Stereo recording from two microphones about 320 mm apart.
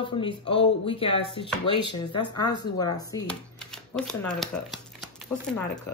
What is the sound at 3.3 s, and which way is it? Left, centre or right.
Shuffling cards, centre.